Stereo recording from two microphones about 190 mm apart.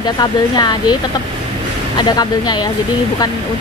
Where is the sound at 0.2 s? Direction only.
20° left (ahead or behind).